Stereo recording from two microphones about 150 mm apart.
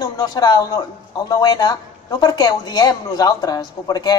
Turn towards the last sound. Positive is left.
turn(degrees=25)  # may be behind; listen again after turning